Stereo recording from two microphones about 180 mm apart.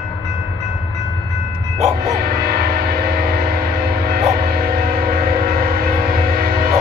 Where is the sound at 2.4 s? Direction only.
60° right (ahead or behind).